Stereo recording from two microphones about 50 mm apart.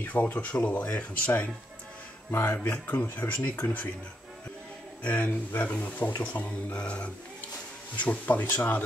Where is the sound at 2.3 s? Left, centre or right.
Left.